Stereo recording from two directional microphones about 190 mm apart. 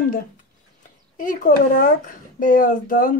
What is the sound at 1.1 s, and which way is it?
Speech, 45° left (ahead or behind).